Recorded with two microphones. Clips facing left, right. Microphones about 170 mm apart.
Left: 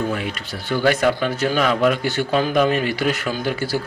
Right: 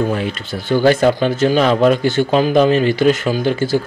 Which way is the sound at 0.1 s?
30° right (ahead or behind).